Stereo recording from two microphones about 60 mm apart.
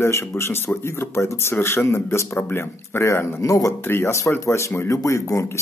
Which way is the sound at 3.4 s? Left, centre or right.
Left.